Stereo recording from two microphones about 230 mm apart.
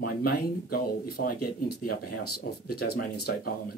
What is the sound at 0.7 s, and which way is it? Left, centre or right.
Speech, left.